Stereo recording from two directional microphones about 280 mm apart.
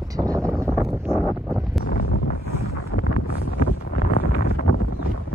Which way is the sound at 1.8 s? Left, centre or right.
Left.